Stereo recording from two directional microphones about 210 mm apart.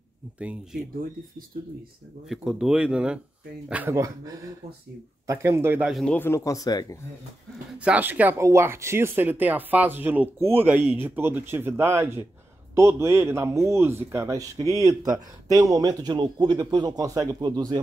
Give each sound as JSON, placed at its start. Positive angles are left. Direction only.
{"t": 2.2, "sound": "speech", "side_deg": 0}
{"t": 7.8, "sound": "speech", "side_deg": -10}